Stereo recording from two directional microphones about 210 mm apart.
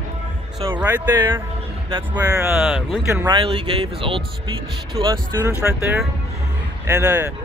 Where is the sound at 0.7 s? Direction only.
10° right (ahead or behind).